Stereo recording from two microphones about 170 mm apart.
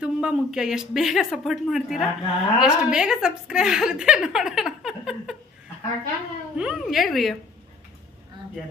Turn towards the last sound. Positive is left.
turn(degrees=0)  # may be behind; listen again after turning